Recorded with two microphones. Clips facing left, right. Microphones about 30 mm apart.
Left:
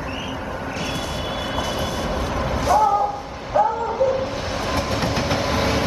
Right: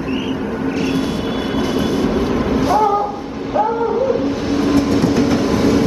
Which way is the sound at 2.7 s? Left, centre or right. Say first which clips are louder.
Left 1 dB; centre.